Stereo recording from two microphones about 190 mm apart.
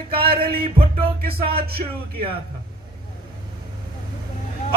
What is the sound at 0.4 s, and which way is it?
Speech, 30° right (ahead or behind).